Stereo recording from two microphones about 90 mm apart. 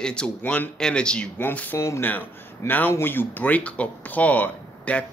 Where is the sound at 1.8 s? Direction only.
30° left (ahead or behind).